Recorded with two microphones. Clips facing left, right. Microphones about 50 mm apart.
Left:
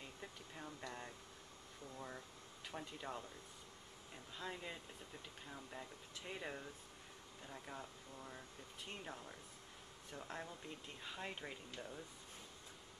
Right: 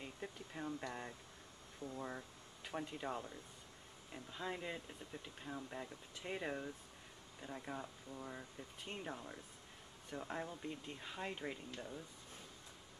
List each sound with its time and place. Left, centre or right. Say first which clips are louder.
0.0 s speech: right 4 dB; centre
2.7 s speech: right 5 dB; centre